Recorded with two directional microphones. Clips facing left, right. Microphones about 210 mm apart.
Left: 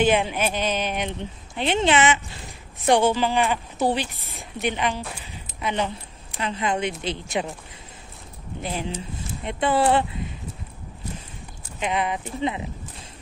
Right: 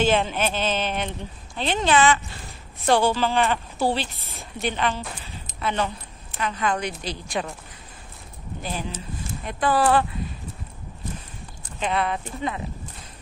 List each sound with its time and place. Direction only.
0.0 s a woman's voice: 15° left (ahead or behind)
4.1 s a woman's voice: centre (ahead or behind)
4.4 s a woman's voice: 15° left (ahead or behind)
5.0 s a sound: 10° left (ahead or behind)
6.4 s a woman's voice: 25° left (ahead or behind)
8.6 s a woman's voice: 25° left (ahead or behind)
11.8 s a woman's voice: 15° left (ahead or behind)